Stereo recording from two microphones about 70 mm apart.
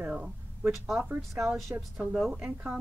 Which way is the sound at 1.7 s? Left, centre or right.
Right.